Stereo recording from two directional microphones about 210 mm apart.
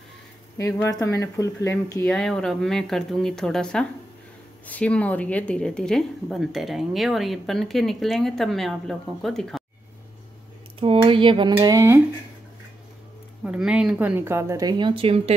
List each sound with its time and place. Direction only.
0.6 s speech: 15° left (ahead or behind)
10.8 s speech: 25° right (ahead or behind)
13.4 s speech: 5° right (ahead or behind); by 15.3 s 25° right (ahead or behind)